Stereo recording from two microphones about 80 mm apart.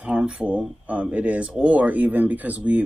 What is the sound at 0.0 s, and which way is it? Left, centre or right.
Speech, centre.